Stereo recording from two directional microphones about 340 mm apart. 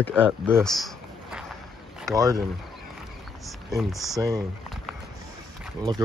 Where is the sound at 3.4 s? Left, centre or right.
Centre.